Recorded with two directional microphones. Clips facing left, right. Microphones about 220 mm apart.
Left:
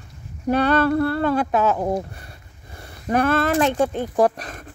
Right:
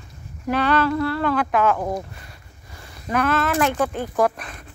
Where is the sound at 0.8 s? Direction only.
50° left (ahead or behind).